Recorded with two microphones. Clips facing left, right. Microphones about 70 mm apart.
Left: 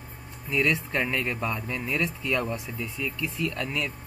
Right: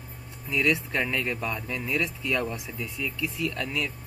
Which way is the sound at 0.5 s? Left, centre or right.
Left.